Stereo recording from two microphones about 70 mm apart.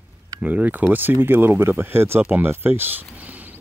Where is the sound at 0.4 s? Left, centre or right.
Right.